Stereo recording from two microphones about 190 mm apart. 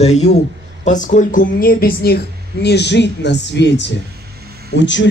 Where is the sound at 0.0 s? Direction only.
35° left (ahead or behind).